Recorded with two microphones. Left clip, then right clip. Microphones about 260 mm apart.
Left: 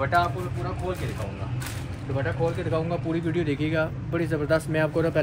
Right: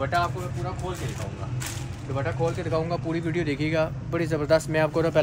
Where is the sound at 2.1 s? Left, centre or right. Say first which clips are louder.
Even; centre.